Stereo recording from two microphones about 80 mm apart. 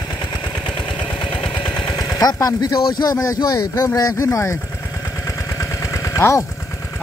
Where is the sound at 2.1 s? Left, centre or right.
Left.